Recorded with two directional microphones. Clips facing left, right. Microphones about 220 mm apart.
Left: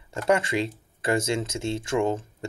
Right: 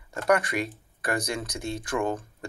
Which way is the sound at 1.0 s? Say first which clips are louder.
Left 5 dB; 25° left (ahead or behind).